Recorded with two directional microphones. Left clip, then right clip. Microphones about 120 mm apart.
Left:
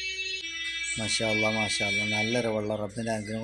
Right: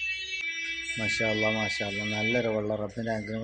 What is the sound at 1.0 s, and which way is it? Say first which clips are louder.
Speech: even; 15° left (ahead or behind).